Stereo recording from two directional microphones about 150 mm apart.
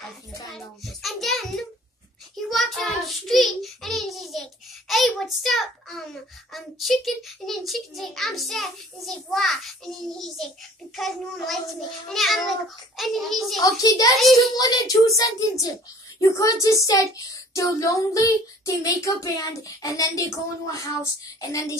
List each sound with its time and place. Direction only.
1.0 s music: centre (ahead or behind)
2.5 s child singing: centre (ahead or behind)
6.5 s a child's voice: centre (ahead or behind)
11.0 s a child's voice: centre (ahead or behind)
13.6 s child singing: 25° left (ahead or behind)